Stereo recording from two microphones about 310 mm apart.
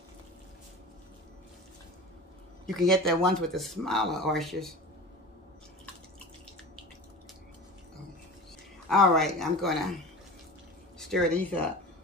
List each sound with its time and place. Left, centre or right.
2.6 s speech: centre
8.8 s speech: centre
11.0 s speech: centre